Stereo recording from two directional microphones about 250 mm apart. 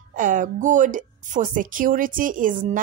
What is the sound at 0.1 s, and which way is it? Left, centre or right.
Speech, right.